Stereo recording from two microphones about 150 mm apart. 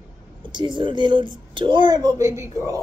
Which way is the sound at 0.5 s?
30° right (ahead or behind).